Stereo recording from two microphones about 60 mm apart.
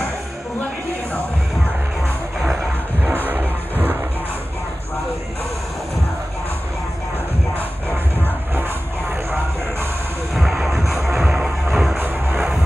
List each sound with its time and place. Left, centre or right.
3.0 s vehicle: right
10.3 s music: centre
12.0 s music: right